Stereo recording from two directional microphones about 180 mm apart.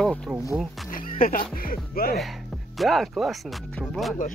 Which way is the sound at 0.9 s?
50° left (ahead or behind).